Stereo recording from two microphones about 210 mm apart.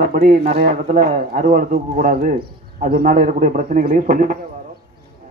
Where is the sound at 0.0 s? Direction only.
45° right (ahead or behind).